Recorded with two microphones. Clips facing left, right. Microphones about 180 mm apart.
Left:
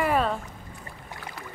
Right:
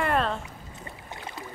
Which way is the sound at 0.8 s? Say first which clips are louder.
Right 2 dB; 25° right (ahead or behind).